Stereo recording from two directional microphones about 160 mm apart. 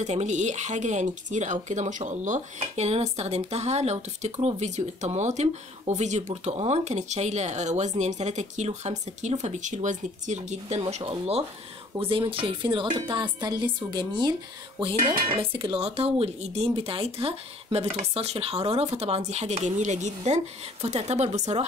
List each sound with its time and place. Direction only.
0.0 s speech: 45° right (ahead or behind)